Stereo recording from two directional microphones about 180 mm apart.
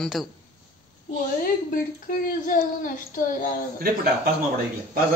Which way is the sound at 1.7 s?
50° left (ahead or behind).